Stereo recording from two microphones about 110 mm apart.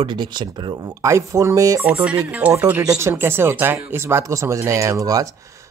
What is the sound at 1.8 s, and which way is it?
Music, 10° right (ahead or behind).